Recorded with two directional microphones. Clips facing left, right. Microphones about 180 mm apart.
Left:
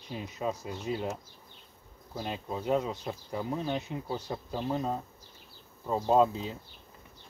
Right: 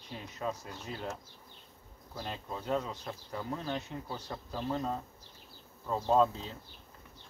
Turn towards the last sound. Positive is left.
turn(degrees=10)  # may be behind; listen again after turning